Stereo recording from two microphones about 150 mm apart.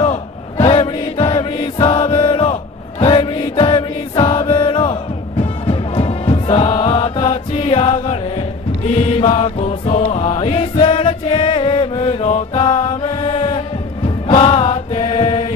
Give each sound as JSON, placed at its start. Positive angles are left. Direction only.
{"t": 0.0, "sound": "chant", "side_deg": 40}
{"t": 3.0, "sound": "music", "side_deg": 35}